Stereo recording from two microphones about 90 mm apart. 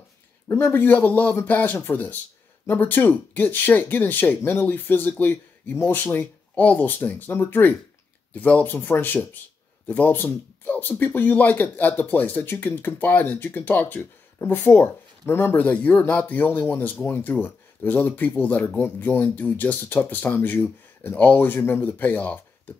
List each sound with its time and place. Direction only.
0.5 s speech: 25° left (ahead or behind)